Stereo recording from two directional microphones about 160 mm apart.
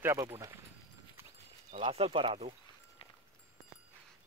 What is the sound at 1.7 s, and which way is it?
Speech, 40° right (ahead or behind).